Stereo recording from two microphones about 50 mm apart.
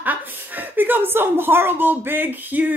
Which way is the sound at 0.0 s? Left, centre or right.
Right.